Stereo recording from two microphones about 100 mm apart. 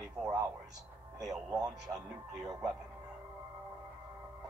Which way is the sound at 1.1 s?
5° right (ahead or behind).